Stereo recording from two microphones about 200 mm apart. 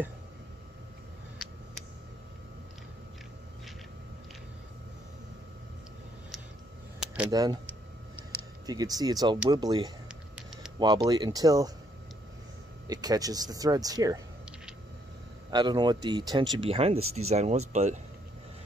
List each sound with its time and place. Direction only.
7.2 s speech: 20° right (ahead or behind)
8.6 s speech: 20° right (ahead or behind)
12.8 s speech: 20° right (ahead or behind)
15.5 s speech: 20° right (ahead or behind)